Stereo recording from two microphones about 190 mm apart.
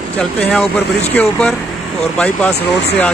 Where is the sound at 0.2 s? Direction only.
5° left (ahead or behind).